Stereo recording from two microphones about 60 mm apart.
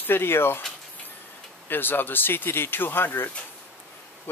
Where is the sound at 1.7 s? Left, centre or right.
Left.